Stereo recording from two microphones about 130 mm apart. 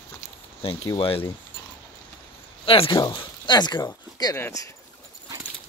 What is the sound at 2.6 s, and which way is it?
Speech, 45° left (ahead or behind).